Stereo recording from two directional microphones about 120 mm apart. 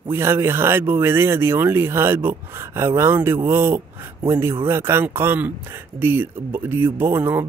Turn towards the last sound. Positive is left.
turn(degrees=-20)  # may be behind; listen again after turning